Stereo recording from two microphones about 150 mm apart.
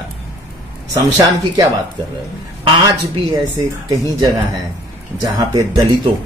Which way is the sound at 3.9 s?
25° right (ahead or behind).